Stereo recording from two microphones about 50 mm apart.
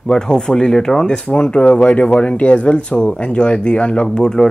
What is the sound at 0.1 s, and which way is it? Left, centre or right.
Speech, centre.